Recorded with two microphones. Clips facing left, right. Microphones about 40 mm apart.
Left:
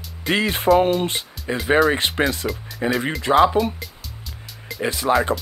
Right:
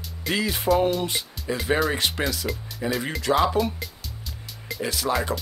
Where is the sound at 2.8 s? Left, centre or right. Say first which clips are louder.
Left 5 dB; left.